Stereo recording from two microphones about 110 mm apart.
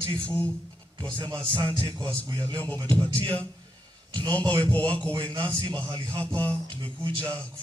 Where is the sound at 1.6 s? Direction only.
15° left (ahead or behind).